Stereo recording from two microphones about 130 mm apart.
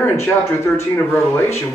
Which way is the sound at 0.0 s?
20° left (ahead or behind).